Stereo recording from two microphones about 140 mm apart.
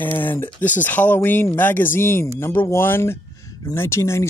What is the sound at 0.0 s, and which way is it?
Speech, 15° left (ahead or behind).